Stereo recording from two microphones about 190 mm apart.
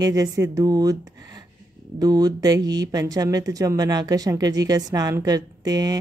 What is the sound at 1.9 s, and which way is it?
A woman's voice, 20° right (ahead or behind).